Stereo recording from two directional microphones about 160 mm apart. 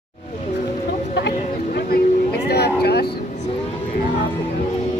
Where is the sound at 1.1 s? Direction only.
80° left.